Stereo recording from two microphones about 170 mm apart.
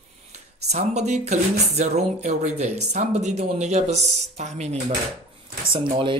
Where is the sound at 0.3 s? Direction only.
40° right (ahead or behind).